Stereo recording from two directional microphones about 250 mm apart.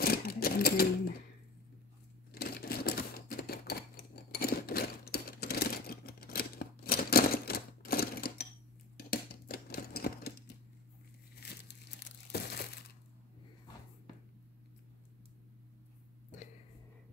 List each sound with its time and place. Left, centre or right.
0.0 s sewing machine: left
2.3 s typewriter: left
8.9 s a sound: left
11.3 s crumpling: left